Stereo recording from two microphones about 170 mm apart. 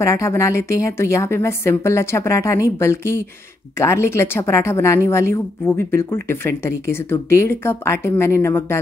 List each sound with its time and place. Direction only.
0.0 s a woman's voice: 15° left (ahead or behind)